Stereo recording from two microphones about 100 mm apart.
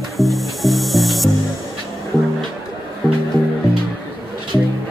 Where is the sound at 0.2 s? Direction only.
Centre (ahead or behind).